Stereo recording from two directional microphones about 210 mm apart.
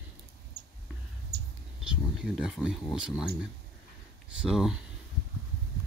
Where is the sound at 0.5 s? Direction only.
50° right (ahead or behind).